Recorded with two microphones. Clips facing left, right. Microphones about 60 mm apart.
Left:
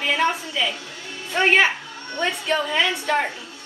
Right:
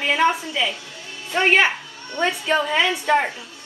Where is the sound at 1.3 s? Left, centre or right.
Centre.